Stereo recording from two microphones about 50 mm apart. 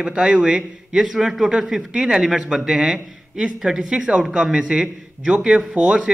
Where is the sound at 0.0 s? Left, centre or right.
Centre.